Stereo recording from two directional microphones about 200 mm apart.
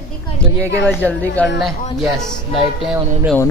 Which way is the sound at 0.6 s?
10° left (ahead or behind).